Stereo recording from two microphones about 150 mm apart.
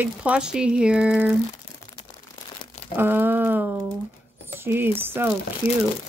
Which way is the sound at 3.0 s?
15° right (ahead or behind).